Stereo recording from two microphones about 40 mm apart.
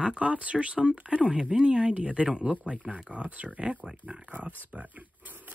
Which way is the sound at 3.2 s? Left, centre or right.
Right.